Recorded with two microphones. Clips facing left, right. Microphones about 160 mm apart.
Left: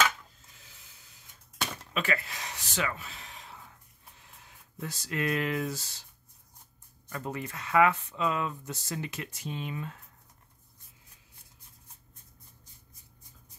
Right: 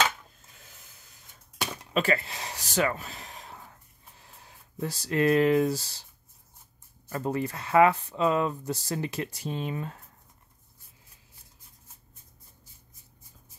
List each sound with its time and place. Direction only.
2.0 s speech: 30° right (ahead or behind)
4.2 s a sound: 35° right (ahead or behind)
5.6 s speech: 35° right (ahead or behind)
7.1 s speech: 35° right (ahead or behind)